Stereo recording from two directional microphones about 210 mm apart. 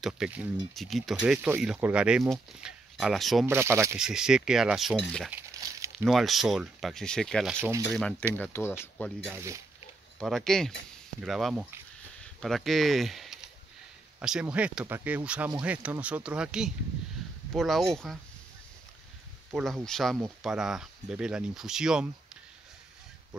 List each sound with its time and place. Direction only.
0.0 s speech: centre (ahead or behind)
3.4 s speech: 10° right (ahead or behind)
5.3 s crumpling: 15° right (ahead or behind)
6.0 s speech: centre (ahead or behind)
9.3 s speech: 15° right (ahead or behind)
10.1 s speech: centre (ahead or behind)
19.5 s speech: centre (ahead or behind)